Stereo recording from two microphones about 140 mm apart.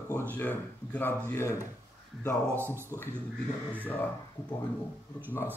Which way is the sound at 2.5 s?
15° right (ahead or behind).